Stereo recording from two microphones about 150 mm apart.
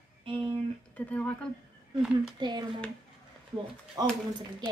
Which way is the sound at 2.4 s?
30° right (ahead or behind).